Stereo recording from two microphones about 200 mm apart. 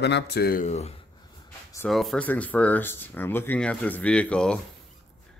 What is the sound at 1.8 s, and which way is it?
Speech, centre (ahead or behind).